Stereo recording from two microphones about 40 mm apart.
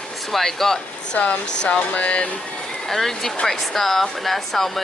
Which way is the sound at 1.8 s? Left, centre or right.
Left.